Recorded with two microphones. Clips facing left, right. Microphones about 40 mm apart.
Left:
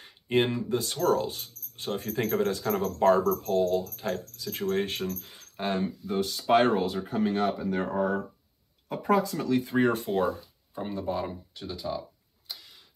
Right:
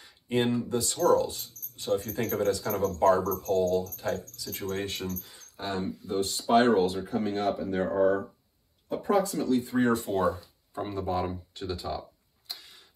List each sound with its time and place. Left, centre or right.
0.0 s speech: left
8.8 s speech: left
11.9 s speech: centre
12.5 s a sound: centre